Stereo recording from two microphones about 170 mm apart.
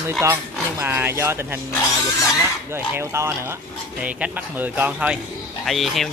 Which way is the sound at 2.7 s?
15° right (ahead or behind).